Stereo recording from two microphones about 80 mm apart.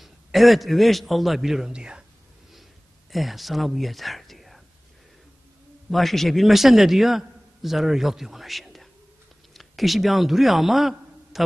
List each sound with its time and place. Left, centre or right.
0.0 s a man's voice: centre
3.1 s speech: centre
5.9 s a man's voice: centre